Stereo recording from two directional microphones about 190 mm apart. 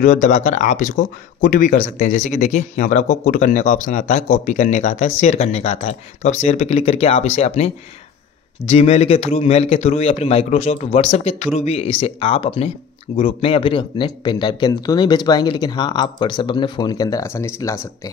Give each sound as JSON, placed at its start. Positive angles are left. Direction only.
{"t": 0.0, "sound": "speech", "side_deg": 40}